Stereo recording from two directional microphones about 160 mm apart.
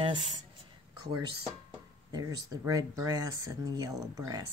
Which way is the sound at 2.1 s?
25° right (ahead or behind).